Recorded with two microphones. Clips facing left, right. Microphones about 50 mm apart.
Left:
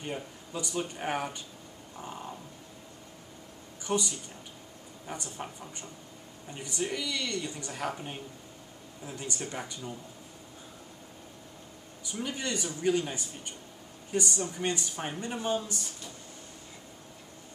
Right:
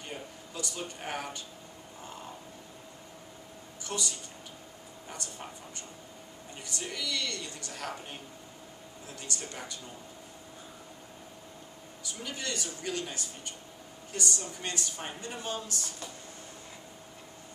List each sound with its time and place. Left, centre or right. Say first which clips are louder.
0.0 s a woman's voice: left 4 dB; centre
3.8 s a woman's voice: left 6 dB; centre
12.1 s a woman's voice: left 4 dB; centre